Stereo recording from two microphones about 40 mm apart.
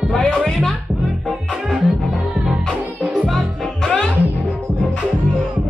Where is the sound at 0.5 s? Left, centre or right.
Centre.